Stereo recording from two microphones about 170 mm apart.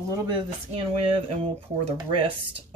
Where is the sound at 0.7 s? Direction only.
35° right (ahead or behind).